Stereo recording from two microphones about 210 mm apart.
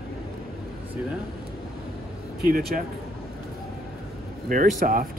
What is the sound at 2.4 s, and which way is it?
Speech, 45° right (ahead or behind).